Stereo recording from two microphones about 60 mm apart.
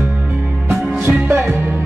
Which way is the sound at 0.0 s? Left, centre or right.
Right.